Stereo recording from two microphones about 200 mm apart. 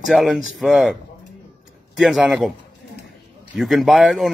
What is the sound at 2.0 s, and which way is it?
Speech, 5° right (ahead or behind).